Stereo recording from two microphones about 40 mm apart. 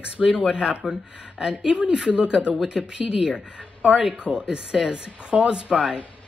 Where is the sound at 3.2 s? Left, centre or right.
Right.